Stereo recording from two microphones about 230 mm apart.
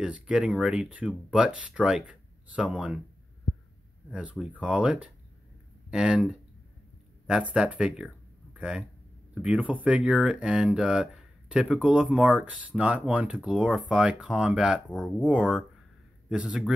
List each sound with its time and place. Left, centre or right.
0.0 s speech: centre
4.1 s speech: centre